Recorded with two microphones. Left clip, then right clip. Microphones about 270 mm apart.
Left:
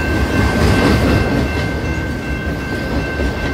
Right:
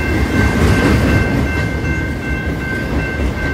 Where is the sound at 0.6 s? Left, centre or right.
Left.